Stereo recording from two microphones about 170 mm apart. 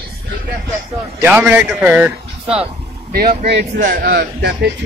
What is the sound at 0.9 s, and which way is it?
A man's voice, 10° right (ahead or behind).